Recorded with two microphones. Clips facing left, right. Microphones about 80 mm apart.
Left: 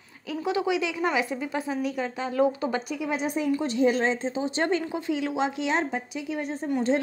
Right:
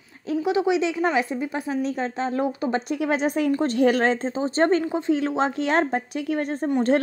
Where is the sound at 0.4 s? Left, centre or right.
Right.